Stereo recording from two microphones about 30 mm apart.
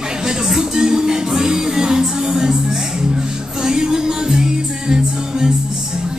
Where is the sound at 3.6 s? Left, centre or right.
Right.